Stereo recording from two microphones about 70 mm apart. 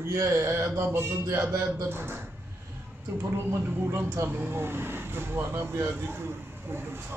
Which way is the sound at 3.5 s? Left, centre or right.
Right.